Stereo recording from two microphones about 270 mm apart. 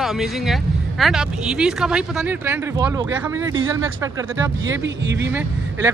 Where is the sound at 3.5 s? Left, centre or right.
Right.